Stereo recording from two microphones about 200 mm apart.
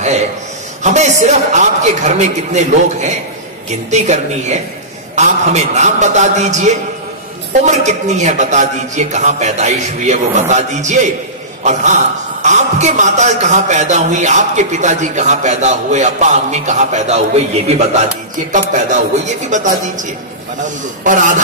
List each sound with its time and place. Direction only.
0.8 s a man's voice: 35° right (ahead or behind)